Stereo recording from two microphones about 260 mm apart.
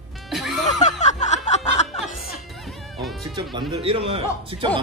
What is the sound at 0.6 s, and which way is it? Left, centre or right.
Music, left.